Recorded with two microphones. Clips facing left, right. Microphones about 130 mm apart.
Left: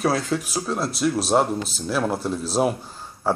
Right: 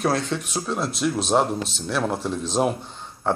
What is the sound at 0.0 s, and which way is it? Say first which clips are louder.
Speech: left 1 dB; centre (ahead or behind).